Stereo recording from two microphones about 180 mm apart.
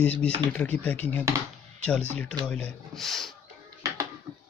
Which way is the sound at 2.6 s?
Centre (ahead or behind).